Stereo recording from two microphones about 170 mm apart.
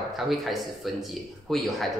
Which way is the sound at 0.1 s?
Centre (ahead or behind).